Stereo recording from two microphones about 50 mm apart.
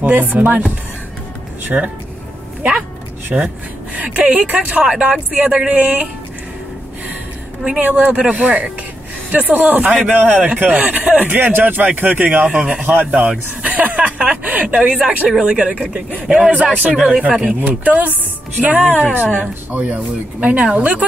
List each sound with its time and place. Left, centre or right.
0.0 s speech: right
1.7 s speech: right
3.3 s speech: right
7.8 s speech: right
12.5 s speech: right
12.8 s speech: right
15.0 s speech: centre
15.4 s speech: right
17.6 s speech: right